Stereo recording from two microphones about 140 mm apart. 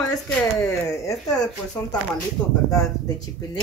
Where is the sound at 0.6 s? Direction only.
20° left (ahead or behind).